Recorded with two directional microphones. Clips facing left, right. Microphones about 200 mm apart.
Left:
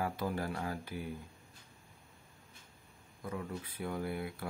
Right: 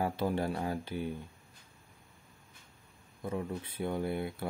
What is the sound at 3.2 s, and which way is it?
Speech, 25° right (ahead or behind).